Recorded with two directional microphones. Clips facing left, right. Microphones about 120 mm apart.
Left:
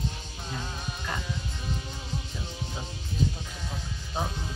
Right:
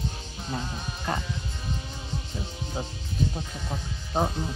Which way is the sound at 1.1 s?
45° right (ahead or behind).